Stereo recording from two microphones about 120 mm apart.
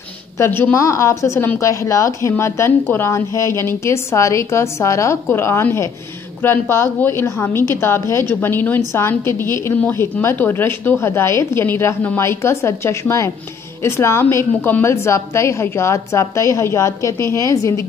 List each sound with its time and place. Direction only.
0.4 s a woman's voice: 15° left (ahead or behind)